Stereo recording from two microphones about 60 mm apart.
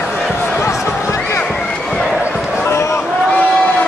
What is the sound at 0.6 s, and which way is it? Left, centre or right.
Basketball bounce, left.